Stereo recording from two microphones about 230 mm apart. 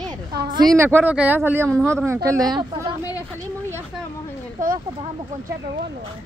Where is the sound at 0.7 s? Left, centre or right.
Centre.